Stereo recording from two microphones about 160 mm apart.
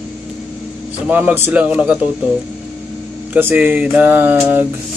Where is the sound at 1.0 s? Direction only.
10° right (ahead or behind).